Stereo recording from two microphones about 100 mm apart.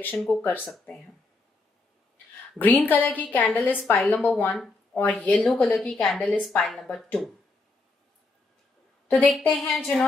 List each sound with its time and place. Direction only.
0.3 s a woman's voice: 15° left (ahead or behind)
2.6 s a woman's voice: 15° left (ahead or behind)
5.5 s a woman's voice: 5° left (ahead or behind)
9.0 s a woman's voice: 10° left (ahead or behind)
9.5 s a woman's voice: centre (ahead or behind)